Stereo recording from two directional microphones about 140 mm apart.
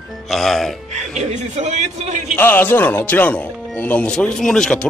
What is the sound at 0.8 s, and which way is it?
A man's voice, 55° right (ahead or behind).